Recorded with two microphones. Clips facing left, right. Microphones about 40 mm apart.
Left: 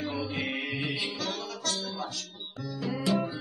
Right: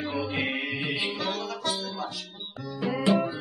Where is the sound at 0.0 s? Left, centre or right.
Centre.